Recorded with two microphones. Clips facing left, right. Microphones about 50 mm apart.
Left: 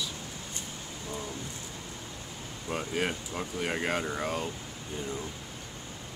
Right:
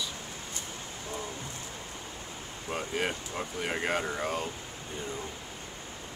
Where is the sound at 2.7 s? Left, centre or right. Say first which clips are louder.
Left 1 dB; centre.